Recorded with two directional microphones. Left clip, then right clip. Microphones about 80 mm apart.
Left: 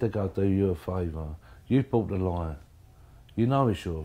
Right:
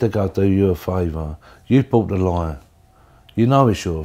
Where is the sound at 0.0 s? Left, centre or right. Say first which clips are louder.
Right 9 dB; right.